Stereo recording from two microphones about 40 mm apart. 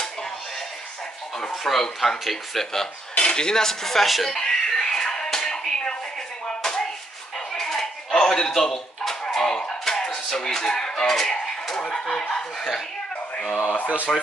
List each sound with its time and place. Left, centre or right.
1.5 s speech: centre
3.2 s speech: centre
4.3 s a sound: centre
6.4 s chopping: centre
7.3 s dishes: centre
9.3 s a sound: centre
9.7 s speech: centre
12.5 s speech: centre
14.1 s speech: centre